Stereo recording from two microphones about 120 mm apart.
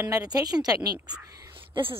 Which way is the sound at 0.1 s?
30° right (ahead or behind).